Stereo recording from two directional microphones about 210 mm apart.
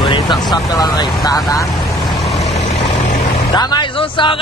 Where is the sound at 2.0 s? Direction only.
Centre (ahead or behind).